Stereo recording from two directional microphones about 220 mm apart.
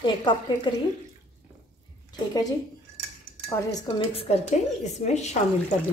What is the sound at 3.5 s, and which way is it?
A woman's voice, 20° left (ahead or behind).